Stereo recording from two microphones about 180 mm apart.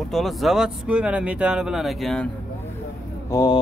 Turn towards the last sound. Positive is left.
turn(degrees=20)  # may be behind; listen again after turning